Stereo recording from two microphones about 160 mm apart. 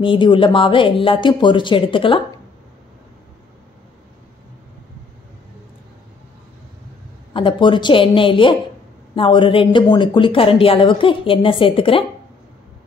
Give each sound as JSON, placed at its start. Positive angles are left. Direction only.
{"t": 0.0, "sound": "a woman's voice", "side_deg": 30}
{"t": 7.3, "sound": "a woman's voice", "side_deg": 30}